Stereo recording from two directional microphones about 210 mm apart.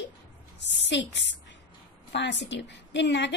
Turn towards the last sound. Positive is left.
turn(degrees=55)  # may be behind; listen again after turning